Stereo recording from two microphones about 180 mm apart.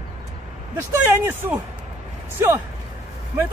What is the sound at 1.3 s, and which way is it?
Speech, 10° right (ahead or behind).